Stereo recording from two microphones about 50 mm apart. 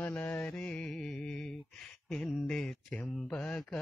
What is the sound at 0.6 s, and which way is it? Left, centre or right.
Mantra, centre.